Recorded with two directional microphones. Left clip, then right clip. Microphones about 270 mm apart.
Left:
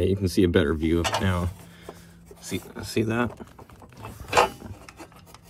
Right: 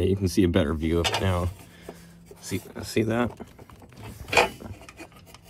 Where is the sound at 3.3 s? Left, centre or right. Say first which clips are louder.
Even; centre.